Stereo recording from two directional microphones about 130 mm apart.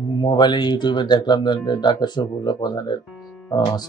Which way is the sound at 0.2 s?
35° left (ahead or behind).